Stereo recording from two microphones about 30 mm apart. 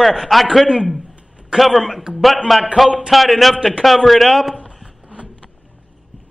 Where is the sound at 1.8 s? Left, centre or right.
Centre.